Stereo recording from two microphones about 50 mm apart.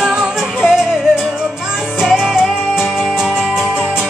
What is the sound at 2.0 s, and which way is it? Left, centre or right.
Music, centre.